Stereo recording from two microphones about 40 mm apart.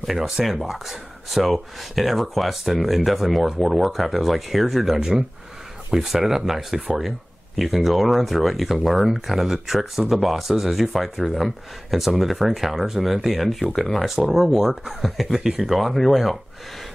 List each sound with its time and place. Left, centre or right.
0.0 s speech: centre
4.9 s speech: right
5.9 s speech: centre
13.7 s speech: centre
14.0 s speech: centre
15.3 s speech: centre
15.8 s speech: centre